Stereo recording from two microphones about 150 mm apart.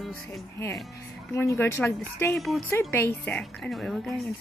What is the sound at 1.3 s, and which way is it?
Speech, 15° left (ahead or behind).